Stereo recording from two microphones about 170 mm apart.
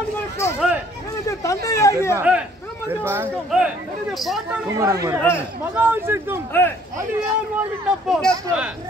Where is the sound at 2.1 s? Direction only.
10° right (ahead or behind).